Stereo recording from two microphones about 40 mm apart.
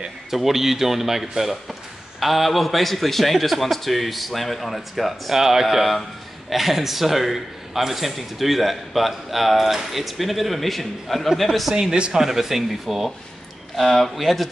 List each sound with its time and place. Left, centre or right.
0.3 s a man's voice: centre
5.4 s a man's voice: centre
12.1 s a man's voice: centre